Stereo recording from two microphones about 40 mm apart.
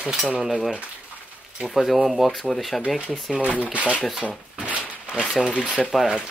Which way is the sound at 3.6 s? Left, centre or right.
Right.